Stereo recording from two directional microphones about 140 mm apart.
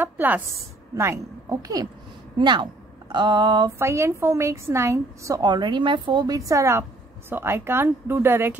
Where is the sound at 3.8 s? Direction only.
20° right (ahead or behind).